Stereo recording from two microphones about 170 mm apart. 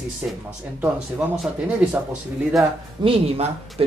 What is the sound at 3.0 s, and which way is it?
Speech, 35° right (ahead or behind).